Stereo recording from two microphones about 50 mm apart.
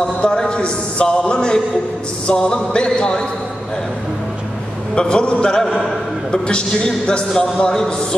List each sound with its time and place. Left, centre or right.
0.2 s a man's voice: centre
4.9 s a man's voice: centre